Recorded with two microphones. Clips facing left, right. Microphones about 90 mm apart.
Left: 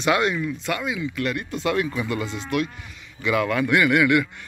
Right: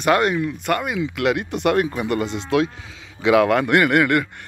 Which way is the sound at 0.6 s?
60° right (ahead or behind).